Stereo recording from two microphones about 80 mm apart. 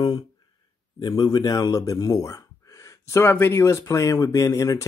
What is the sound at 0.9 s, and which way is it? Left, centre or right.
Speech, left.